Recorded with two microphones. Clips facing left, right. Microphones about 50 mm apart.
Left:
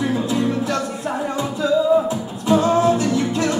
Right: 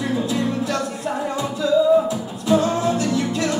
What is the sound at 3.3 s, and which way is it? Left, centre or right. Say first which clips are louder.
Music: left 2 dB; left.